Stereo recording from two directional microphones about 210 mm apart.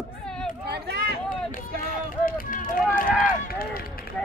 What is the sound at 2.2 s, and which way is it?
Run, 40° left (ahead or behind).